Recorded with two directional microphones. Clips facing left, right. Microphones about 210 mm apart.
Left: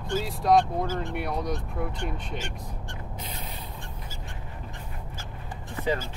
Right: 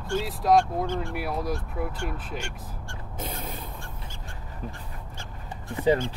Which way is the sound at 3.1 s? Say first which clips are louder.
Right 8 dB; 50° right (ahead or behind).